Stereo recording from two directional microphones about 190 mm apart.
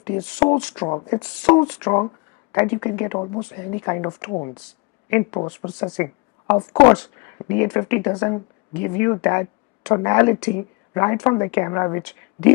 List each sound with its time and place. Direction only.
0.0 s speech: 25° left (ahead or behind)
2.5 s speech: 15° left (ahead or behind)
4.3 s speech: 35° left (ahead or behind)
5.1 s speech: 20° left (ahead or behind)
6.0 s a sound: 15° left (ahead or behind)
6.7 s speech: 25° left (ahead or behind)
7.4 s speech: 15° left (ahead or behind)